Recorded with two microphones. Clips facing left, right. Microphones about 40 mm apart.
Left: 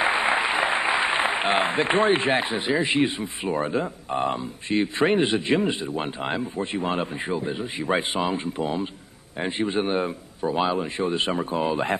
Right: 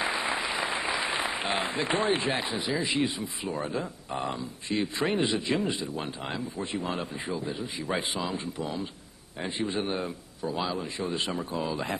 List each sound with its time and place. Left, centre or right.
0.0 s speech: left